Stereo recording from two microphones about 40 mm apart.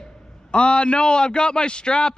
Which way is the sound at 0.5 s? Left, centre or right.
Left.